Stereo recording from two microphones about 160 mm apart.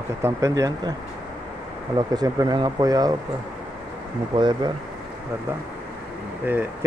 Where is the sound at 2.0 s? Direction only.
25° right (ahead or behind).